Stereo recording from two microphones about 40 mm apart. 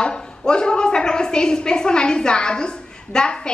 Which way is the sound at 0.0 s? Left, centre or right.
Left.